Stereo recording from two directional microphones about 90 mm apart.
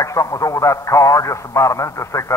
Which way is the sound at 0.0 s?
35° left (ahead or behind).